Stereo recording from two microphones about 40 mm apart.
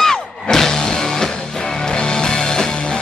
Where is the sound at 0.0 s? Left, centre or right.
Centre.